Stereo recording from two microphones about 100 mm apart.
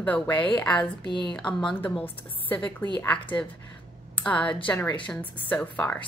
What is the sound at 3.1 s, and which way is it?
A woman's voice, 15° left (ahead or behind).